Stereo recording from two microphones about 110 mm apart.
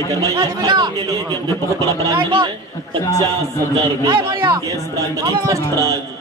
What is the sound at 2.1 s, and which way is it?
Speech, 50° right (ahead or behind).